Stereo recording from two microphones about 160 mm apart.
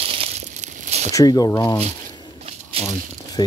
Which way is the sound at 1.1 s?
25° left (ahead or behind).